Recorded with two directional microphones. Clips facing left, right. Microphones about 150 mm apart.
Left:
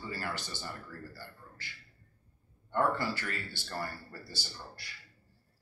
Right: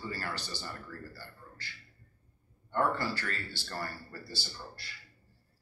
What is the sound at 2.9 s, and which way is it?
Speech, 15° left (ahead or behind).